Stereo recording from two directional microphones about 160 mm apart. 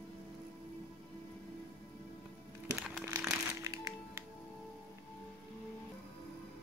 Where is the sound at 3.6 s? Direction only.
20° right (ahead or behind).